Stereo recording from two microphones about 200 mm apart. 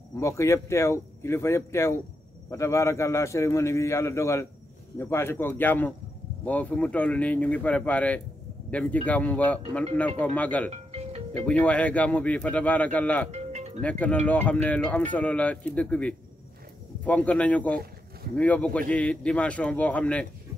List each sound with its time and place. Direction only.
0.2 s speech: 15° left (ahead or behind)
10.7 s music: 30° right (ahead or behind)
11.3 s speech: 5° left (ahead or behind)
13.3 s music: 35° right (ahead or behind)
13.7 s speech: 5° left (ahead or behind)